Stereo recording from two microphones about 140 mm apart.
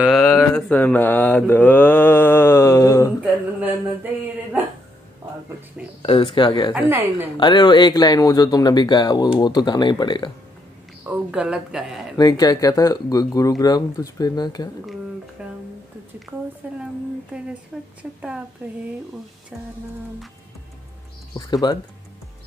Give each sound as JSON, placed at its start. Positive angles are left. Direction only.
{"t": 0.0, "sound": "a sound", "side_deg": 0}
{"t": 0.3, "sound": "mantra", "side_deg": 10}
{"t": 6.0, "sound": "speech", "side_deg": 40}
{"t": 6.9, "sound": "a woman's voice", "side_deg": -15}
{"t": 7.3, "sound": "speech", "side_deg": 35}
{"t": 11.1, "sound": "a sound", "side_deg": -10}
{"t": 12.2, "sound": "speech", "side_deg": 30}
{"t": 15.4, "sound": "a sound", "side_deg": -10}
{"t": 16.6, "sound": "a woman's voice", "side_deg": -10}
{"t": 21.3, "sound": "speech", "side_deg": 30}